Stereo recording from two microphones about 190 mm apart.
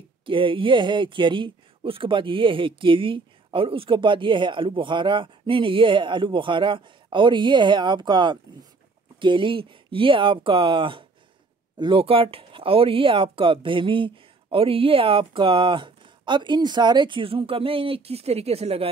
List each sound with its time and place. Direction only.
0.2 s speech: 25° right (ahead or behind)